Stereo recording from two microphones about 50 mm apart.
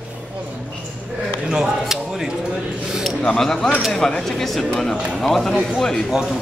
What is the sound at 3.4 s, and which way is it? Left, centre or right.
Speech, centre.